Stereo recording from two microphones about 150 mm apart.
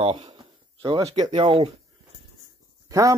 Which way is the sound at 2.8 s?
20° right (ahead or behind).